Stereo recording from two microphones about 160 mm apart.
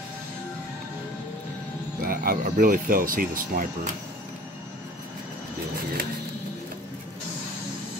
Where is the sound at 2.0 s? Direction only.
60° right (ahead or behind).